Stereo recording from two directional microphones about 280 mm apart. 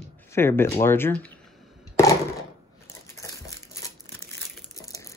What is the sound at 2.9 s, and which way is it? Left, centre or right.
Crumpling, centre.